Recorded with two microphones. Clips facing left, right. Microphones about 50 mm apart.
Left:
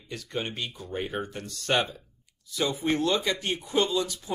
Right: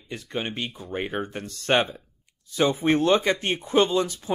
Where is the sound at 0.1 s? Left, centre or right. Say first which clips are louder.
Right 3 dB; right.